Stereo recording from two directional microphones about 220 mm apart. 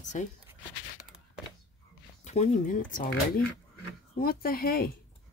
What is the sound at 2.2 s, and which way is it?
Speech, 30° left (ahead or behind).